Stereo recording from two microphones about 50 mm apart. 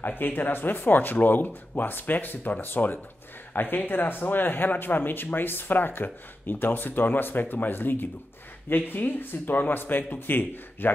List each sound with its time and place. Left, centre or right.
0.0 s speech: left